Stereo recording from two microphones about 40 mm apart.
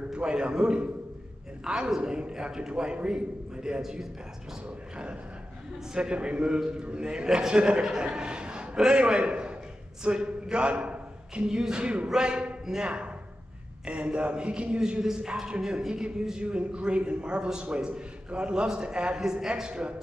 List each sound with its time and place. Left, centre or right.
0.1 s a man's voice: right
3.8 s speech: centre
4.6 s a man's voice: right
14.8 s a man's voice: centre